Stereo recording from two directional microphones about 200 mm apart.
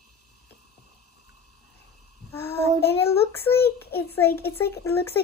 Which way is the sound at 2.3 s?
10° left (ahead or behind).